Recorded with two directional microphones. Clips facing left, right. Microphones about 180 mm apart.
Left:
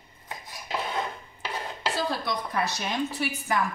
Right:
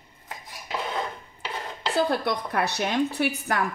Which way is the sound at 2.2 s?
65° right (ahead or behind).